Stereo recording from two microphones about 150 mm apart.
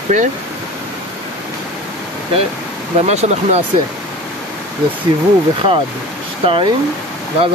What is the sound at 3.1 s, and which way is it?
Speech, 45° right (ahead or behind).